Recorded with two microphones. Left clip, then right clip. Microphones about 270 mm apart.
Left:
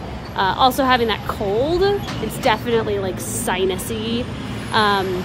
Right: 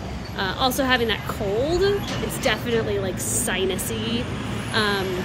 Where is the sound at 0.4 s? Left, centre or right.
Centre.